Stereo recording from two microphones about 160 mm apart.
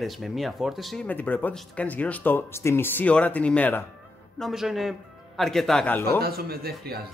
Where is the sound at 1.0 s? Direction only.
10° left (ahead or behind).